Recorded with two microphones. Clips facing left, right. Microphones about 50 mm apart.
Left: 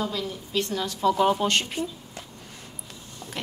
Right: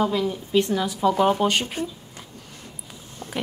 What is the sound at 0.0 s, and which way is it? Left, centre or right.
A woman's voice, centre.